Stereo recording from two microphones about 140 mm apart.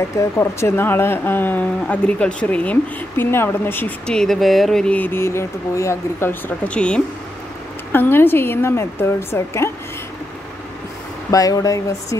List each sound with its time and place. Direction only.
0.2 s speech: 20° left (ahead or behind)
11.2 s speech: 25° left (ahead or behind)